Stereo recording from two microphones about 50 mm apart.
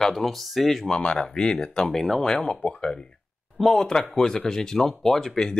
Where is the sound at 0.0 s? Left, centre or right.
Centre.